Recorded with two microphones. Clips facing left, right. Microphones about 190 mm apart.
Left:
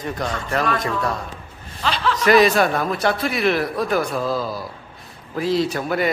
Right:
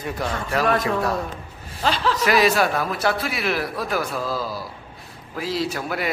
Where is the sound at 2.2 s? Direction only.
5° right (ahead or behind).